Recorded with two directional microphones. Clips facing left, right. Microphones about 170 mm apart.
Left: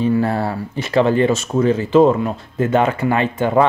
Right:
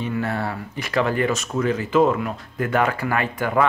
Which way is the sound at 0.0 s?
35° left (ahead or behind).